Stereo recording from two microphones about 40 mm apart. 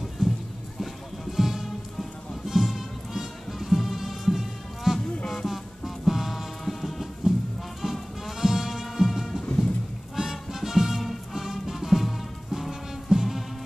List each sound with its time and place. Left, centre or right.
0.2 s music: centre
5.2 s music: centre
6.0 s music: centre